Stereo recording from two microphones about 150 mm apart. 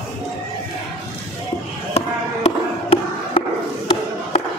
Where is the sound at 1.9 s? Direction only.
40° left (ahead or behind).